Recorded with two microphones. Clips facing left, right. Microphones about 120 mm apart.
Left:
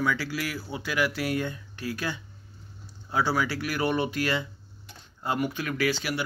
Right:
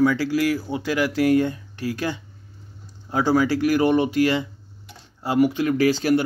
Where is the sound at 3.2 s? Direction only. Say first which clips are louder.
Right 11 dB; 40° right (ahead or behind).